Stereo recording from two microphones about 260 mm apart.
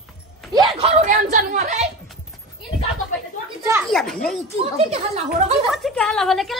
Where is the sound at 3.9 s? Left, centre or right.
Centre.